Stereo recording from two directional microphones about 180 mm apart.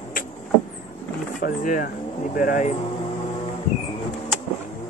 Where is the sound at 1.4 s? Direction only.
50° left (ahead or behind).